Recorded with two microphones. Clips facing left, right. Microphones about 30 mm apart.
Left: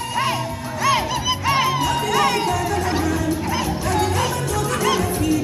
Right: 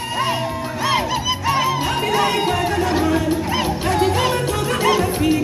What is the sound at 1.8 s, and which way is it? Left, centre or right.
Music, right.